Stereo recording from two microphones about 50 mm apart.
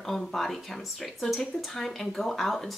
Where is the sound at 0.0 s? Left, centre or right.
Centre.